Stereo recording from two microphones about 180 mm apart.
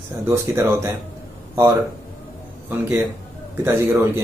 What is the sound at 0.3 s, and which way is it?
Speech, 15° right (ahead or behind).